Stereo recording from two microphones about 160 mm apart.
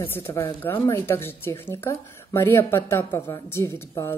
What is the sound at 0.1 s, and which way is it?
Speech, 15° left (ahead or behind).